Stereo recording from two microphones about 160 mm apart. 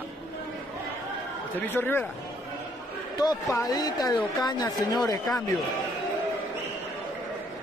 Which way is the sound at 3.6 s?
25° left (ahead or behind).